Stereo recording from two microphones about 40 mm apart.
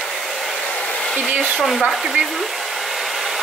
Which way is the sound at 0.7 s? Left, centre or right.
Left.